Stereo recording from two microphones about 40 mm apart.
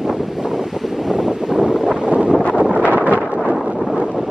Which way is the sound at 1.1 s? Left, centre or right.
Centre.